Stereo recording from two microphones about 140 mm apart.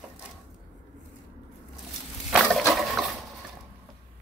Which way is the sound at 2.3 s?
Centre (ahead or behind).